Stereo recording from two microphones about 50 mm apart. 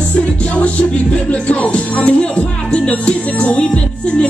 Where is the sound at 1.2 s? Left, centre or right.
Left.